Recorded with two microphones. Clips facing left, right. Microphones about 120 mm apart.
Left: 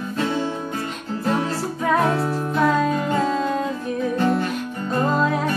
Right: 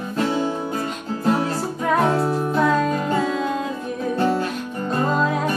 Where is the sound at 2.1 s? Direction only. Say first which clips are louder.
Right 2 dB; 25° right (ahead or behind).